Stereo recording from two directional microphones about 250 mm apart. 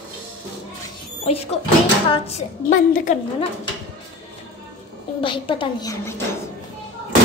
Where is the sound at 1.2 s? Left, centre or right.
Left.